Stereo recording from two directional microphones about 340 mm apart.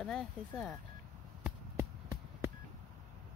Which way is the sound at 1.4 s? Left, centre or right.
Centre.